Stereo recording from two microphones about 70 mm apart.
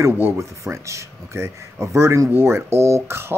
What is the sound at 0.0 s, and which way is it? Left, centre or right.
Speech, right.